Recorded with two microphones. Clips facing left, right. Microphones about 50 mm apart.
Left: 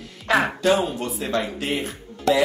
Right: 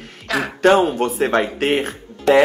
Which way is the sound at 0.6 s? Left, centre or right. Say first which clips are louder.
Right 7 dB; right.